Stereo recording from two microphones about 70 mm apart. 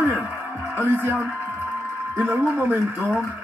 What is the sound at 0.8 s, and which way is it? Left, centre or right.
Speech, right.